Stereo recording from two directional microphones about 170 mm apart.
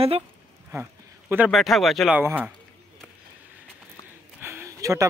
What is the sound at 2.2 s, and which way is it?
Speech, 10° right (ahead or behind).